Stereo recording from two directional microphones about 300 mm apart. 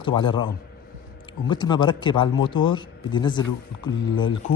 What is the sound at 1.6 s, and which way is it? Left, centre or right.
A man's voice, centre.